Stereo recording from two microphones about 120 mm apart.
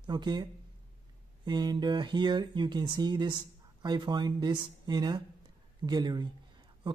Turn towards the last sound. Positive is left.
turn(degrees=-35)  # may be behind; listen again after turning